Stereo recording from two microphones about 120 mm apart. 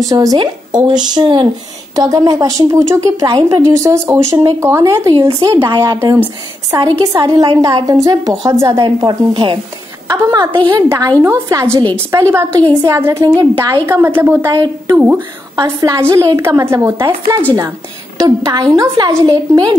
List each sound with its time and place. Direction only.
0.1 s a woman's voice: 30° right (ahead or behind)
0.4 s a woman's voice: 40° right (ahead or behind)
2.0 s a woman's voice: 30° right (ahead or behind)
5.7 s a woman's voice: 40° right (ahead or behind)
10.0 s a woman's voice: 25° right (ahead or behind)
10.5 s a woman's voice: 45° right (ahead or behind)
10.9 s a woman's voice: 30° right (ahead or behind)
13.8 s a woman's voice: 20° right (ahead or behind)
14.5 s a woman's voice: 35° right (ahead or behind)
15.6 s a woman's voice: 25° right (ahead or behind)